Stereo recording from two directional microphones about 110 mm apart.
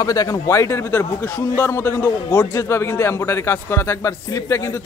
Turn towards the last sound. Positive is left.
turn(degrees=30)  # may be behind; listen again after turning